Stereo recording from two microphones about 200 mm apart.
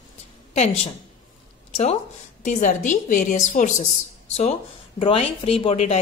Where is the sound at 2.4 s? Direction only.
40° left (ahead or behind).